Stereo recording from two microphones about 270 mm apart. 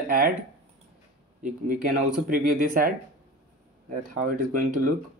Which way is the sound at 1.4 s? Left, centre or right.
Right.